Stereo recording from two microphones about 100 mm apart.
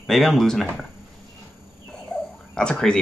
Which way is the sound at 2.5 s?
10° left (ahead or behind).